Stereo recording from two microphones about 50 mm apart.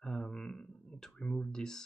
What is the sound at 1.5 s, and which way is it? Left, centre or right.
Speech, centre.